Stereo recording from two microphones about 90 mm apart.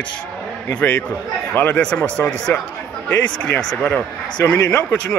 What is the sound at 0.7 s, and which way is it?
Speech, 20° left (ahead or behind).